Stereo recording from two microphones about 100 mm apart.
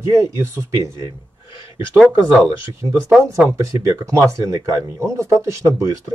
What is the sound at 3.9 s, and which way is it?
Speech, 30° right (ahead or behind).